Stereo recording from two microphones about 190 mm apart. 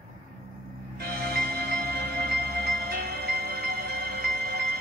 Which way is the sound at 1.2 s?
55° right (ahead or behind).